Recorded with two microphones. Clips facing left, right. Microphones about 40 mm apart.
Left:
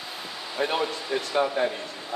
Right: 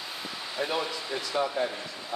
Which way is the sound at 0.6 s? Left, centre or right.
Left.